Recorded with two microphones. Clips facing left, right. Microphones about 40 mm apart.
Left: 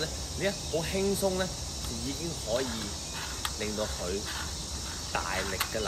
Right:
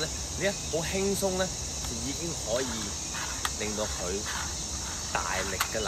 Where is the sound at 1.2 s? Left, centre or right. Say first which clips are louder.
Even; centre.